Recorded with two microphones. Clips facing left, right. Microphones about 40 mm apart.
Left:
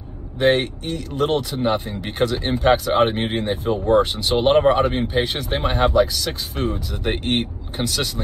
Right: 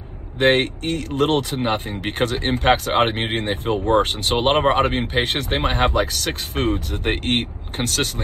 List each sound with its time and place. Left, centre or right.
0.4 s speech: right